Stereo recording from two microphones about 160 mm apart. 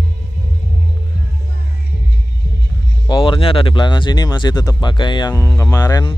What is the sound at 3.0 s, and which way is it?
Speech, 30° left (ahead or behind).